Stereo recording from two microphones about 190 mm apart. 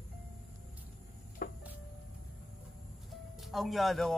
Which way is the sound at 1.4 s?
45° left (ahead or behind).